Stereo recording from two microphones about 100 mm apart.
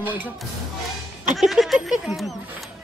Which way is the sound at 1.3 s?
Centre (ahead or behind).